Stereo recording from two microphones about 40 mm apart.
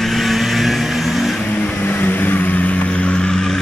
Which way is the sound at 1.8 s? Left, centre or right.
Left.